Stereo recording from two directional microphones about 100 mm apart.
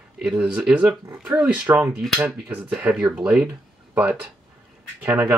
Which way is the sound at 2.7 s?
10° right (ahead or behind).